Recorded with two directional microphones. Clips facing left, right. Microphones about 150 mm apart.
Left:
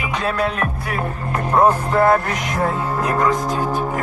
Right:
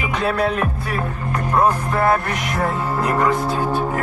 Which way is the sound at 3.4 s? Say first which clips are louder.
Right 1 dB; 15° left (ahead or behind).